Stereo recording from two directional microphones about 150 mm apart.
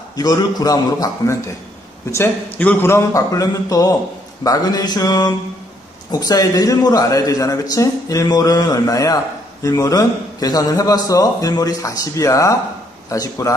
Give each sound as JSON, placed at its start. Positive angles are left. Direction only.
{"t": 0.1, "sound": "speech", "side_deg": 25}